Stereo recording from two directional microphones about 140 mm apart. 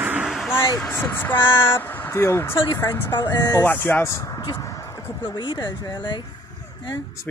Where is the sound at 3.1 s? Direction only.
30° left (ahead or behind).